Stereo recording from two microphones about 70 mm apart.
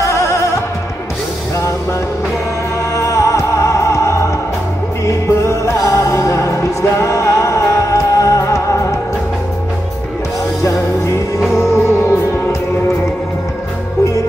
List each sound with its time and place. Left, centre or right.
0.0 s music: left
2.9 s music: left
10.6 s music: left